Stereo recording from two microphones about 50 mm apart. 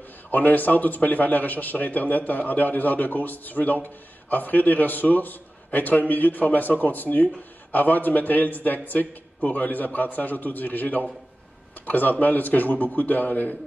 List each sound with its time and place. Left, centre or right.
0.3 s a man's voice: left